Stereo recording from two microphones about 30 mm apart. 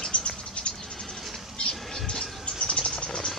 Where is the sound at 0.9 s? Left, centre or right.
Centre.